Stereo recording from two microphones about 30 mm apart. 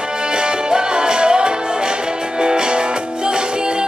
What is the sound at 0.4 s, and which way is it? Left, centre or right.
Music, right.